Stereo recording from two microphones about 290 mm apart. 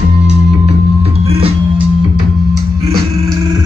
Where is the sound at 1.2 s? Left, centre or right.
Centre.